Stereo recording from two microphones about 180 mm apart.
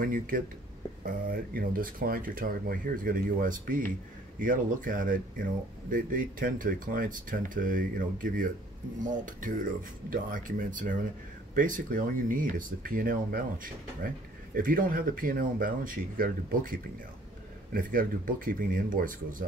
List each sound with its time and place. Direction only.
0.0 s speech: 50° right (ahead or behind)